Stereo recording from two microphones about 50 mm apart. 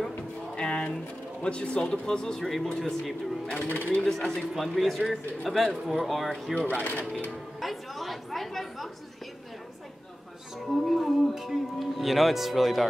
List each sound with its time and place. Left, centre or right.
0.6 s music: centre
1.4 s a man's voice: left; by 3.2 s centre
3.5 s speech: left
4.4 s speech: centre
6.5 s speech: left
7.2 s speech: centre
10.7 s speech: centre